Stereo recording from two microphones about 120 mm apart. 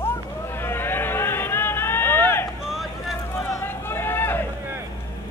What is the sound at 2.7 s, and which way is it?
Boat, centre (ahead or behind).